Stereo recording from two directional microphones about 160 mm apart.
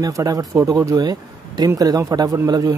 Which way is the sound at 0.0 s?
20° right (ahead or behind).